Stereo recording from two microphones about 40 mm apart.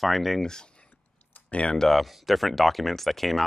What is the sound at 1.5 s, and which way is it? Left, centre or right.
Speech, left.